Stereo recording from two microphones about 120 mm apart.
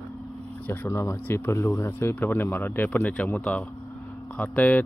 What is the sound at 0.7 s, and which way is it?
Speech, 20° left (ahead or behind).